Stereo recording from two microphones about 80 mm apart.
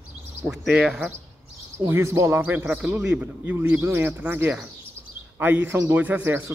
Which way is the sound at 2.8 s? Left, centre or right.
Centre.